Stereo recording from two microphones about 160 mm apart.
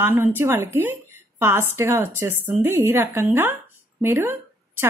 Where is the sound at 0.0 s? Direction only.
15° right (ahead or behind).